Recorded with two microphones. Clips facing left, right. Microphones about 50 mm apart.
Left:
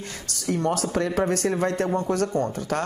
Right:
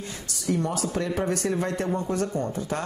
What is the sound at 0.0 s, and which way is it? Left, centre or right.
Speech, left.